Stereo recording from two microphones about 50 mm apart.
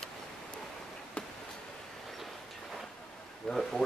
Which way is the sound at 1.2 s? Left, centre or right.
Left.